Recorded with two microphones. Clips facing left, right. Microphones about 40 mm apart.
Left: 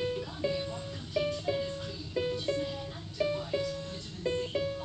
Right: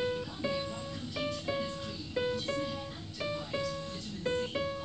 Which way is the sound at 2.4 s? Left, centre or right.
Right.